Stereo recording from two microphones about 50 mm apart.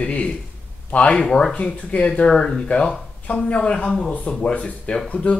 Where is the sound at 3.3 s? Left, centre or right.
Left.